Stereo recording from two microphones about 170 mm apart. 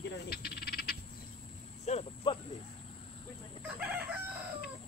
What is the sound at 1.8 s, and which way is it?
Cricket, 35° left (ahead or behind).